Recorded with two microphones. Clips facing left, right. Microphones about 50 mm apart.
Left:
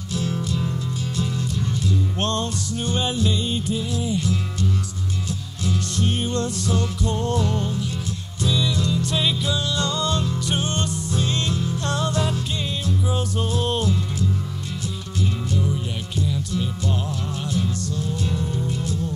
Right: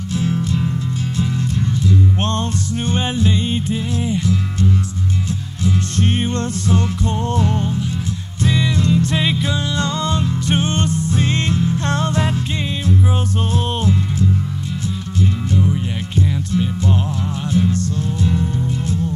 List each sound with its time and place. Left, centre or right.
0.1 s music: right
2.9 s music: right
5.9 s music: right
13.5 s music: right